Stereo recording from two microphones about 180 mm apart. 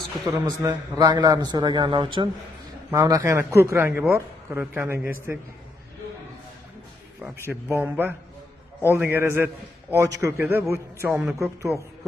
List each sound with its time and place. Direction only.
0.2 s a man's voice: 20° right (ahead or behind)
7.6 s a man's voice: 10° right (ahead or behind)